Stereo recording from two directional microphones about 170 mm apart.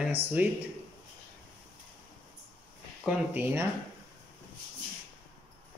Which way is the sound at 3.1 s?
10° right (ahead or behind).